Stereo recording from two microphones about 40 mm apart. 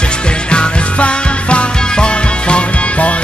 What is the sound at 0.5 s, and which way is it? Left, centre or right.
Music, left.